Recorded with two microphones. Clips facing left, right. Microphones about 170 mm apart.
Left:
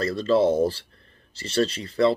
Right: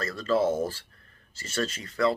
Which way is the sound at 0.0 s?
35° left (ahead or behind).